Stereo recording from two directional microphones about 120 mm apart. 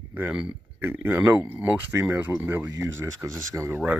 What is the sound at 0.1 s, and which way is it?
Speech, 10° right (ahead or behind).